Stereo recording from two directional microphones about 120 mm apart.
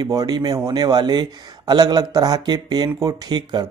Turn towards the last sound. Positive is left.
turn(degrees=-40)  # may be behind; listen again after turning